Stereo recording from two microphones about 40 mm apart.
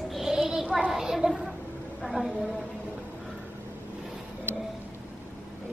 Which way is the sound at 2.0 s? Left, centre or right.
Centre.